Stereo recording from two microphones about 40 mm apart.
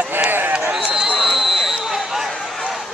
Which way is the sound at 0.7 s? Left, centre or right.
Right.